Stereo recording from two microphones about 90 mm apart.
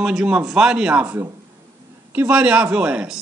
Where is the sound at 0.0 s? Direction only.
10° right (ahead or behind).